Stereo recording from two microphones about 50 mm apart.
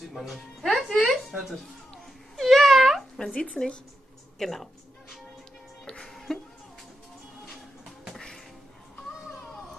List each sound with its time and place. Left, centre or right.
0.1 s speech: centre
1.0 s a sound: centre
2.3 s babbling: centre
3.3 s a woman's voice: centre
6.0 s music: centre
8.1 s music: centre